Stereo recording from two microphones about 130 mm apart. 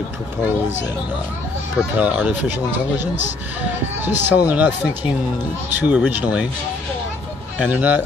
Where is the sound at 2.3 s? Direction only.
15° right (ahead or behind).